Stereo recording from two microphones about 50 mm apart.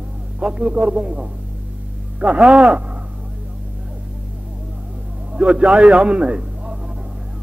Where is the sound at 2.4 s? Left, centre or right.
Centre.